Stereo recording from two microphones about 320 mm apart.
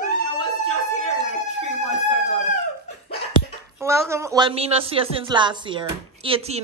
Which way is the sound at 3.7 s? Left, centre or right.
Centre.